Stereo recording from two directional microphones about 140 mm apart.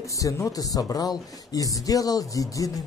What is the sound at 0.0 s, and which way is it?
Speech, 25° left (ahead or behind).